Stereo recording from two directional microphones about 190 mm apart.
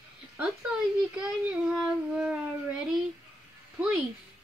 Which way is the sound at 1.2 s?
Centre (ahead or behind).